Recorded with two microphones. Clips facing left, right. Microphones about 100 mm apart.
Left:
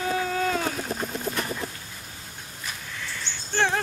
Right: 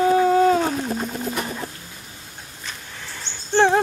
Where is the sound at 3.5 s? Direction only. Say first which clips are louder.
Right 8 dB; 25° right (ahead or behind).